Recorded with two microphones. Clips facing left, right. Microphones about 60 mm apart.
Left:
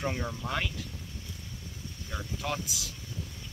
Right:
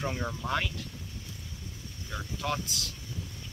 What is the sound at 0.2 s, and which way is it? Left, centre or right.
Speech, centre.